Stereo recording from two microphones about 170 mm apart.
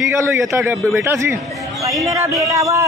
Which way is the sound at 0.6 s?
10° right (ahead or behind).